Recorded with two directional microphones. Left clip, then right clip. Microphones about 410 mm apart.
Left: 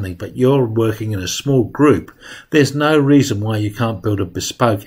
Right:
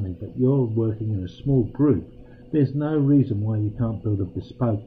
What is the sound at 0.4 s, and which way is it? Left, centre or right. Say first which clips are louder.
Speech: left 8 dB; left.